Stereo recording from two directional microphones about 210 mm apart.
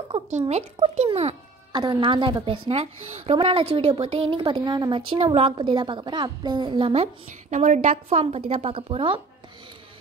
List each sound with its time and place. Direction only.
0.5 s a woman's voice: 30° right (ahead or behind)